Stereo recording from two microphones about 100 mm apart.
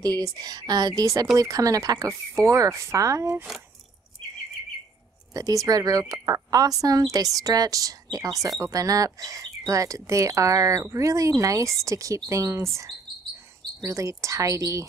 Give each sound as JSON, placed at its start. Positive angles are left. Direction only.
{"t": 0.0, "sound": "speech", "side_deg": -35}
{"t": 5.3, "sound": "speech", "side_deg": -35}
{"t": 13.8, "sound": "speech", "side_deg": -30}